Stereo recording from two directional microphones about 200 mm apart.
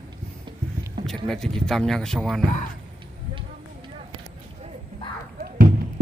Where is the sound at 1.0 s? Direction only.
Centre (ahead or behind).